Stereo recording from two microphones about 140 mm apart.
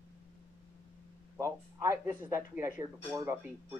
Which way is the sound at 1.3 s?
20° right (ahead or behind).